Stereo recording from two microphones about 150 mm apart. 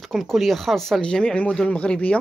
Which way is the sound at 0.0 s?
Centre (ahead or behind).